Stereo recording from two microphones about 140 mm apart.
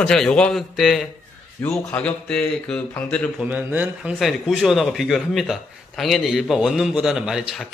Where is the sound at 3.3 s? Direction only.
10° right (ahead or behind).